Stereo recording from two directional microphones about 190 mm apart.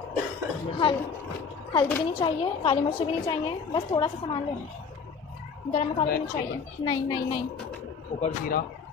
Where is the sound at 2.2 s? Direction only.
25° left (ahead or behind).